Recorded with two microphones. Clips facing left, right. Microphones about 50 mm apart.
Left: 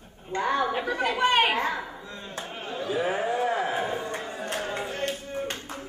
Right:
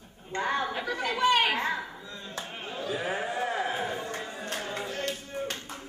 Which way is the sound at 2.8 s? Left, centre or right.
Left.